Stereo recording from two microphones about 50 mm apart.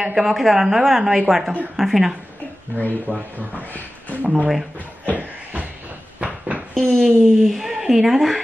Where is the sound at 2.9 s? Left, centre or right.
Right.